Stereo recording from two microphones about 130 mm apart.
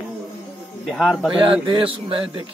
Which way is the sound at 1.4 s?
40° right (ahead or behind).